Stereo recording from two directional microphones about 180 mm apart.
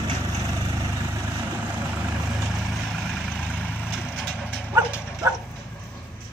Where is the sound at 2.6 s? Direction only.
Centre (ahead or behind).